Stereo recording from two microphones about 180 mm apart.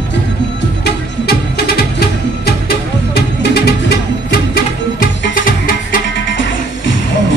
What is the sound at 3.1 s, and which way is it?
Music, 65° left (ahead or behind).